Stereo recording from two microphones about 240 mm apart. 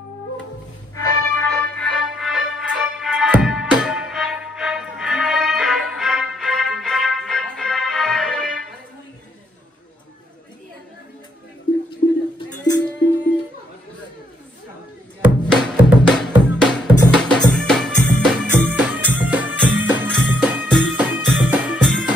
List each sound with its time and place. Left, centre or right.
0.9 s music: centre
12.4 s music: centre
15.2 s music: centre